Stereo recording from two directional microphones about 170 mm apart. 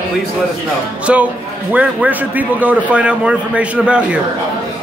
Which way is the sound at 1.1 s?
5° right (ahead or behind).